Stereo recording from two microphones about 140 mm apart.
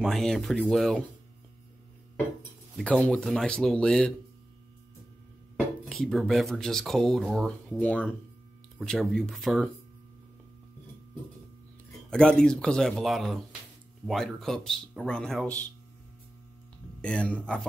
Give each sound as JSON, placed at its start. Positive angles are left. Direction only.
{"t": 0.0, "sound": "speech", "side_deg": 0}
{"t": 2.8, "sound": "speech", "side_deg": 10}
{"t": 5.9, "sound": "speech", "side_deg": 0}
{"t": 12.1, "sound": "speech", "side_deg": 5}
{"t": 17.0, "sound": "speech", "side_deg": 10}